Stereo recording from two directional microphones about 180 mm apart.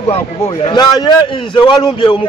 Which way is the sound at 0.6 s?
25° left (ahead or behind).